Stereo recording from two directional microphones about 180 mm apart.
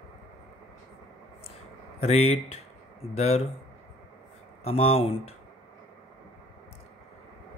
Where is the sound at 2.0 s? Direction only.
35° left (ahead or behind).